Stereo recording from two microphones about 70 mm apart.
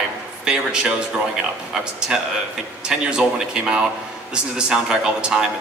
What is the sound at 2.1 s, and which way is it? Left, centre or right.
A man's voice, centre.